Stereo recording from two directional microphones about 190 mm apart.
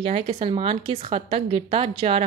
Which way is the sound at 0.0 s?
30° right (ahead or behind).